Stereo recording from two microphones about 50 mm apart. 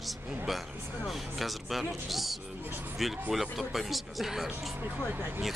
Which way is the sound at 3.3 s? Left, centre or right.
Centre.